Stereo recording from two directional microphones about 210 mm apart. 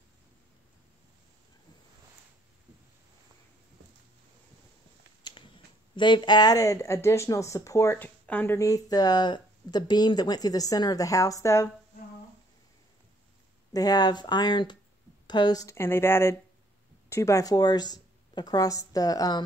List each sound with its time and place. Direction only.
5.2 s finger snapping: 20° left (ahead or behind)
5.9 s speech: 20° left (ahead or behind)
13.7 s speech: 20° left (ahead or behind)